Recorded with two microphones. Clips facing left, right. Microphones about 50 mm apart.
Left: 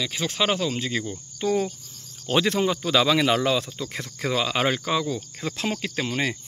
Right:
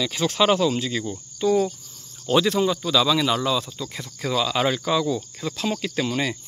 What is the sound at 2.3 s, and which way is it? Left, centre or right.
Speech, left.